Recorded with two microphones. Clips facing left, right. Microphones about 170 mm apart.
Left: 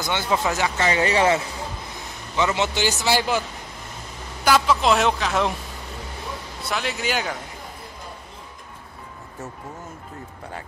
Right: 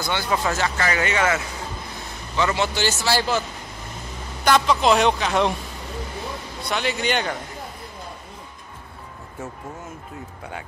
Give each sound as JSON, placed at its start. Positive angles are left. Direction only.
{"t": 0.0, "sound": "a man's voice", "side_deg": 20}
{"t": 2.3, "sound": "a man's voice", "side_deg": 20}
{"t": 4.5, "sound": "speech", "side_deg": 0}
{"t": 6.6, "sound": "speech", "side_deg": 0}